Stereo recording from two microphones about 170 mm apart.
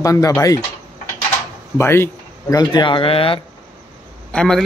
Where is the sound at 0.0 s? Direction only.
20° left (ahead or behind).